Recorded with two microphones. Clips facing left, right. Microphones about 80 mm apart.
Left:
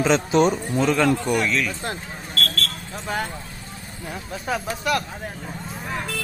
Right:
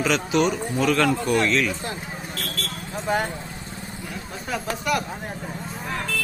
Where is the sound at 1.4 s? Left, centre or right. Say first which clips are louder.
Right 2 dB; centre.